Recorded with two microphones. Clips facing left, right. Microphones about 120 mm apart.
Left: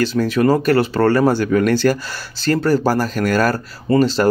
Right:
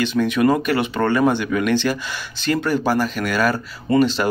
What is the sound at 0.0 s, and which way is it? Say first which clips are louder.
Speech: left 2 dB; 40° left (ahead or behind).